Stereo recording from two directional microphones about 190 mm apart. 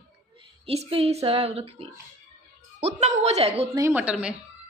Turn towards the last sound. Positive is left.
turn(degrees=-5)  # may be behind; listen again after turning